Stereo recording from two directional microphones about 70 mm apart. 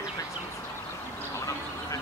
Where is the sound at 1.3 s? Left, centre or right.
Left.